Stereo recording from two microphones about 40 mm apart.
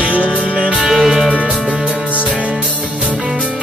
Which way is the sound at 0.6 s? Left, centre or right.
Right.